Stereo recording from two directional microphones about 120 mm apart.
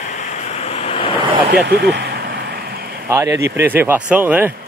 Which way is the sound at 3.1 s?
25° right (ahead or behind).